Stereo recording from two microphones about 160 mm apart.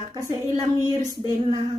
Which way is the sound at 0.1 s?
20° right (ahead or behind).